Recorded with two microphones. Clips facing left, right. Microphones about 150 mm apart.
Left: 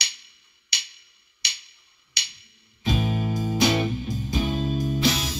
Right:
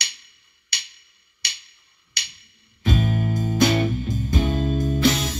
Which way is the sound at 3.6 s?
55° right (ahead or behind).